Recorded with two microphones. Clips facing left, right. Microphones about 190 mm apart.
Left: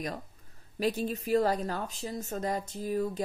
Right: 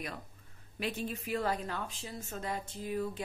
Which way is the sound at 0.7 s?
40° left (ahead or behind).